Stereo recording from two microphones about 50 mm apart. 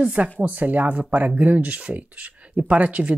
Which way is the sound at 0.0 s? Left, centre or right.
Right.